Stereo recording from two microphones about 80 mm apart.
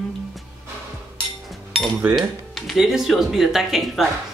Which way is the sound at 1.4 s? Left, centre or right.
Centre.